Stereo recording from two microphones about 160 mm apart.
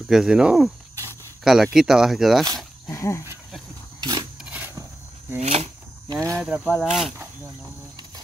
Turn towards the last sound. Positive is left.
turn(degrees=0)  # may be behind; listen again after turning